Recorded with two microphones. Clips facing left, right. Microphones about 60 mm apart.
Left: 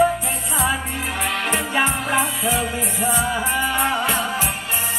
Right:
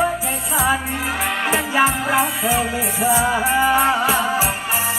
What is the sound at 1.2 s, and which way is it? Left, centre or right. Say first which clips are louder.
Music: right 2 dB; centre.